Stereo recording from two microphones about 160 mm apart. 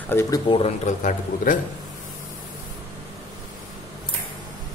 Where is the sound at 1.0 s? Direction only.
50° left (ahead or behind).